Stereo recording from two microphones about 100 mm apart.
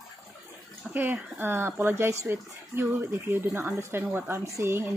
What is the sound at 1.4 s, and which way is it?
Speech, 20° right (ahead or behind).